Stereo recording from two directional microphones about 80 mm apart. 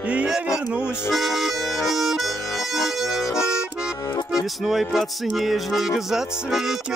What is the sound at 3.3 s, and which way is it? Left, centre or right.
Accordion, centre.